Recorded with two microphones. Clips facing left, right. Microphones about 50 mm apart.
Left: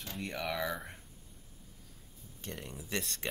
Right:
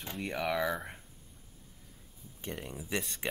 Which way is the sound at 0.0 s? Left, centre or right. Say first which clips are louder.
Right 3 dB; centre.